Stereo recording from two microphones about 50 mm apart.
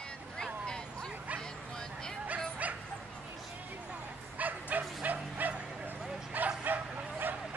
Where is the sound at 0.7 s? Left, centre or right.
Centre.